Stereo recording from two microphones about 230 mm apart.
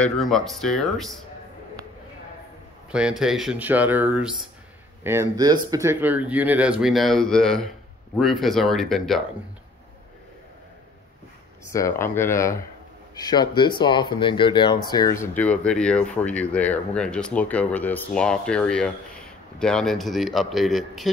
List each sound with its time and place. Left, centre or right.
0.0 s speech: centre
2.9 s speech: centre
11.7 s speech: centre